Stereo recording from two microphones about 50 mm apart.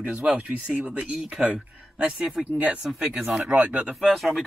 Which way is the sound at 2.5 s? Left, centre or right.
Right.